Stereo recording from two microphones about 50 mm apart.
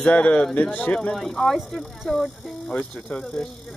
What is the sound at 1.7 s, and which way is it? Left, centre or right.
Speech, centre.